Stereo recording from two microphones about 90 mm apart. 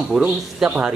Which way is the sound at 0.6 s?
15° right (ahead or behind).